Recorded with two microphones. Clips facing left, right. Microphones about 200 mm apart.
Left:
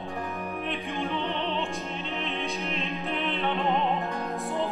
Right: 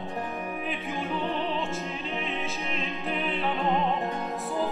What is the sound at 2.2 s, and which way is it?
Music, centre (ahead or behind).